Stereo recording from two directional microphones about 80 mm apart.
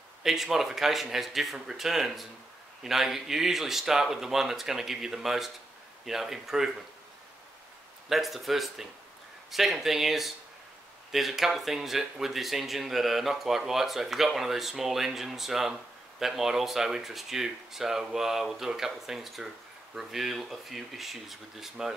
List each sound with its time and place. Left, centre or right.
0.2 s speech: centre
8.1 s speech: centre